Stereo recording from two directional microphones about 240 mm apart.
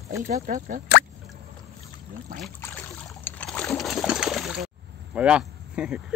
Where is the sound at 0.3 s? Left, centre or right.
Right.